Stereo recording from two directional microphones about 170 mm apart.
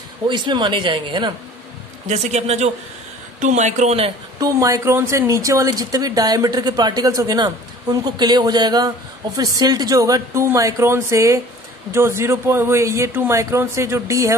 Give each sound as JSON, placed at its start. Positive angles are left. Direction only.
{"t": 0.3, "sound": "speech", "side_deg": -25}
{"t": 2.0, "sound": "a man's voice", "side_deg": -40}
{"t": 4.4, "sound": "speech", "side_deg": -20}